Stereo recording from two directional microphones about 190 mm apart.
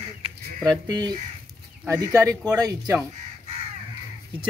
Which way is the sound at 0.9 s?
20° right (ahead or behind).